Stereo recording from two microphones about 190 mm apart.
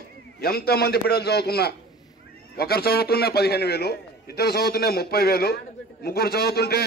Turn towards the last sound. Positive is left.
turn(degrees=55)  # may be behind; listen again after turning